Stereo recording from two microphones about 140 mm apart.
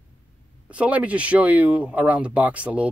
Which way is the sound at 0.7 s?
10° right (ahead or behind).